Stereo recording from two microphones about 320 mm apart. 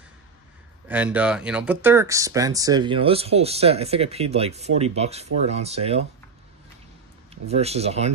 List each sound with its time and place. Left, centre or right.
0.8 s speech: centre
7.4 s speech: centre